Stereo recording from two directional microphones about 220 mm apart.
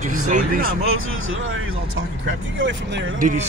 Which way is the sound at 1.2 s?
65° right (ahead or behind).